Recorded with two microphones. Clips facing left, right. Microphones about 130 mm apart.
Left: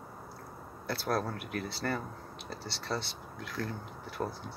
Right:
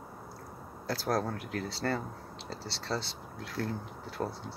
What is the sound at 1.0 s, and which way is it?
Speech, 35° right (ahead or behind).